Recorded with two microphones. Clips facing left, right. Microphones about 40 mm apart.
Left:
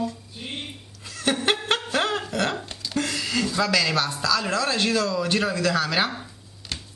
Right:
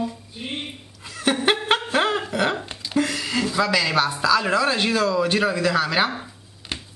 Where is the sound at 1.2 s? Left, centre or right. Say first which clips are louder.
Right 3 dB; centre.